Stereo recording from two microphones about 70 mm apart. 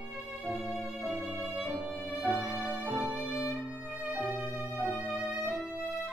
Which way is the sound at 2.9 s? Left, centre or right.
Centre.